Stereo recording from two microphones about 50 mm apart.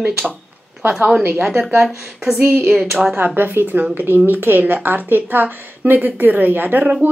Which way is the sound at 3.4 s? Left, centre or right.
Right.